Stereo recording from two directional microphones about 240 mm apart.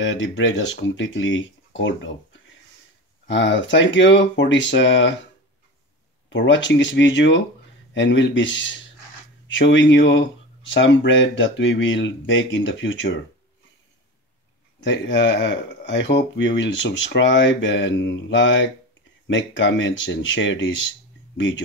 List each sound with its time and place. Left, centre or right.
0.0 s speech: left
3.3 s speech: left
6.3 s speech: left
14.8 s speech: left